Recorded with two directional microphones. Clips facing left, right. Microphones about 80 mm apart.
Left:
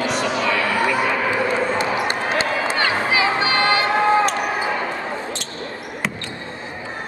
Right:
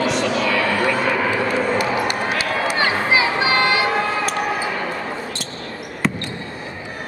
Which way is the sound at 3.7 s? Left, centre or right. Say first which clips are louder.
Left 3 dB; left.